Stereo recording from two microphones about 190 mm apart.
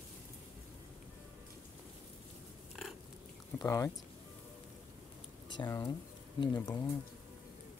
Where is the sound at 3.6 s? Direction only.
15° left (ahead or behind).